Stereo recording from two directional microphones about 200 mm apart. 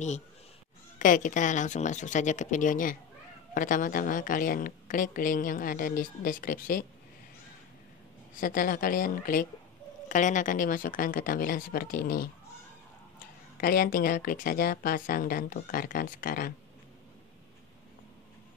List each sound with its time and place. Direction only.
0.9 s speech: 40° left (ahead or behind)
8.4 s speech: 45° left (ahead or behind)
13.6 s speech: 45° left (ahead or behind)